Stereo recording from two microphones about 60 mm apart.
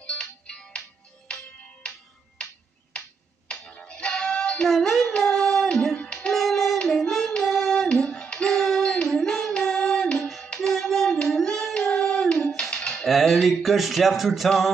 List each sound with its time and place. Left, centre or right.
0.0 s music: centre
3.4 s music: centre
4.6 s child singing: centre
10.2 s music: centre
11.1 s child singing: centre
11.3 s singing: centre
11.9 s a sound: centre
13.0 s music: centre